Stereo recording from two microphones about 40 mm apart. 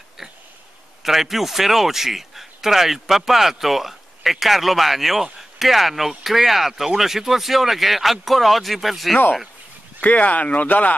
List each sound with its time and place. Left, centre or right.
1.0 s speech: centre
10.0 s speech: left